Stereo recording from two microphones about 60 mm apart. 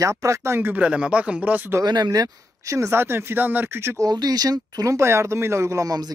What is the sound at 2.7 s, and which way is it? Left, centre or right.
Speech, right.